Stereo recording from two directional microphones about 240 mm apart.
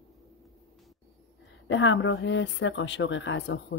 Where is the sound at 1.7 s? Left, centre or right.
Left.